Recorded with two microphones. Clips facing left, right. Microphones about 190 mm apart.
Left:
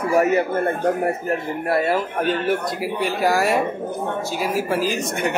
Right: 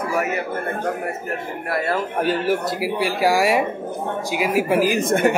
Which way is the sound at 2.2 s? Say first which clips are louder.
Right 1 dB; 5° right (ahead or behind).